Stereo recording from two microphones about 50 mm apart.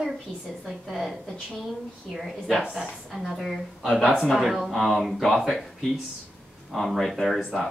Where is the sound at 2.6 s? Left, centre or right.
Centre.